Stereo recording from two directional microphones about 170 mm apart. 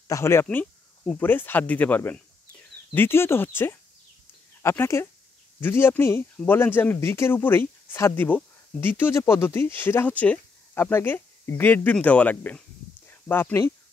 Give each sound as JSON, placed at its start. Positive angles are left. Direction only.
{"t": 0.1, "sound": "speech", "side_deg": 15}